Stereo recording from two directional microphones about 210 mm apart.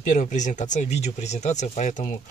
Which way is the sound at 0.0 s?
40° left (ahead or behind).